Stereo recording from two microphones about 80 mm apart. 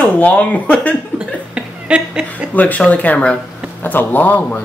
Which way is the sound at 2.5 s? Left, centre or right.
Centre.